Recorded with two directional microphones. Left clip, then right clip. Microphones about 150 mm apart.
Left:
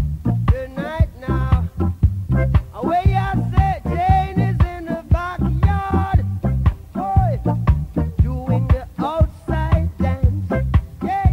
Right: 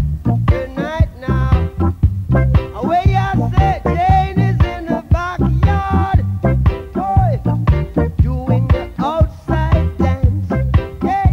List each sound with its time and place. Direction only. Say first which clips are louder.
0.2 s music: right 5 dB; 35° left (ahead or behind)